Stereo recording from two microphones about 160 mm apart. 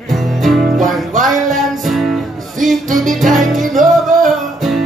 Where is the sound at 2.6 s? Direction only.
55° right (ahead or behind).